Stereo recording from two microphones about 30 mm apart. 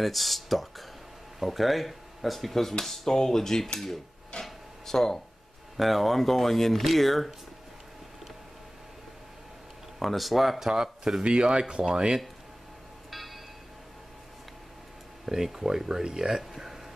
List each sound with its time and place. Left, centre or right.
0.0 s speech: centre
4.8 s speech: centre
5.8 s speech: centre
9.9 s speech: centre
10.7 s speech: centre
11.2 s speech: right
13.1 s a sound: centre
15.2 s speech: centre
16.0 s speech: right
16.3 s speech: centre